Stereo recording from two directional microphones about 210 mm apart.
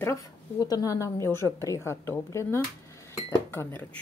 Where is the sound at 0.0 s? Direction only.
15° left (ahead or behind).